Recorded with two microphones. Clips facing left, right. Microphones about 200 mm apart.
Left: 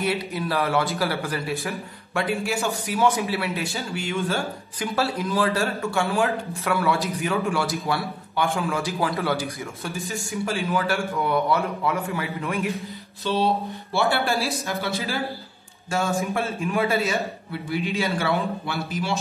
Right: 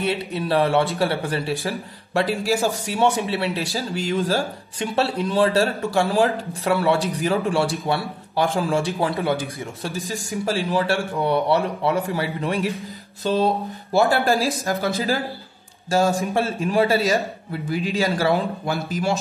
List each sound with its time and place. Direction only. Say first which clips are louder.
0.0 s speech: right 1 dB; 30° right (ahead or behind)
10.4 s speech: right 3 dB; 35° right (ahead or behind)
13.2 s a man's voice: right 3 dB; 50° right (ahead or behind)
14.7 s a man's voice: right 5 dB; 50° right (ahead or behind)
15.9 s speech: right 5 dB; 35° right (ahead or behind)
17.5 s a man's voice: right 3 dB; 45° right (ahead or behind)